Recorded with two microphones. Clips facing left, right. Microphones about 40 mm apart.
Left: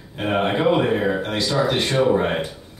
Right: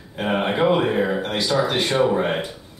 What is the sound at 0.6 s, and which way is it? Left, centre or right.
Speech, centre.